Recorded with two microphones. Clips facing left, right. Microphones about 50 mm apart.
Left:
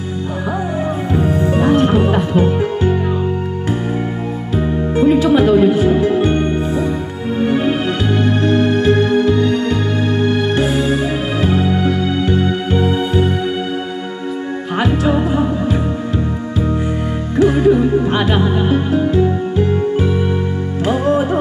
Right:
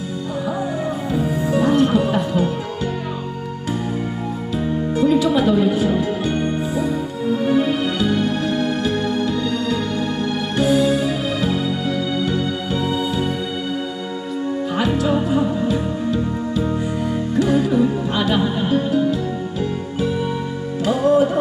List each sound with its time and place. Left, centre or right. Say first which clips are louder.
1.5 s music: left 1 dB; left
4.6 s music: left 4 dB; left
14.9 s music: left 4 dB; left
17.4 s music: left 5 dB; left
20.8 s music: even; left